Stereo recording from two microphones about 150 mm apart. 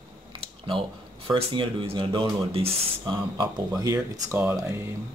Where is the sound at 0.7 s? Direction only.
35° right (ahead or behind).